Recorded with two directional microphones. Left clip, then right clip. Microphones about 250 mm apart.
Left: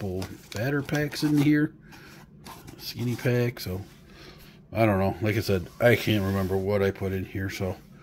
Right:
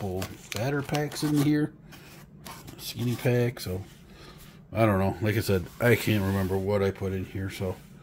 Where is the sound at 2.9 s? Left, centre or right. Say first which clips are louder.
Even; centre.